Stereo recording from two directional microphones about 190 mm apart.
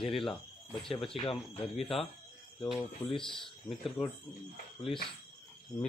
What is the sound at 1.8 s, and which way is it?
Speech, centre (ahead or behind).